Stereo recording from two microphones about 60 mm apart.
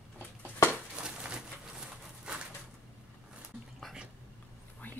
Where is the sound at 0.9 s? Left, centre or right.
Centre.